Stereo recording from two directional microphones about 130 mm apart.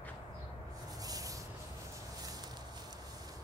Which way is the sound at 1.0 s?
25° right (ahead or behind).